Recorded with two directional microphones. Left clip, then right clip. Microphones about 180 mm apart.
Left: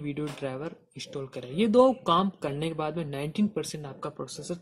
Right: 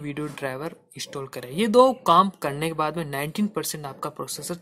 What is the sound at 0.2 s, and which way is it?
Speech, 10° right (ahead or behind).